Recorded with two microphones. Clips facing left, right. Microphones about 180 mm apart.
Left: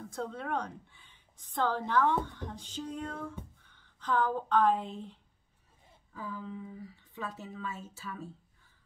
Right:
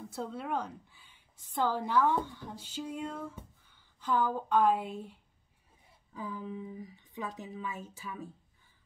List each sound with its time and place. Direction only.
0.1 s speech: 5° right (ahead or behind)